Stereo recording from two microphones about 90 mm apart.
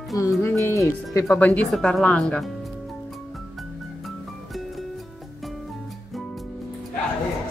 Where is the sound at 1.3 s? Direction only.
20° left (ahead or behind).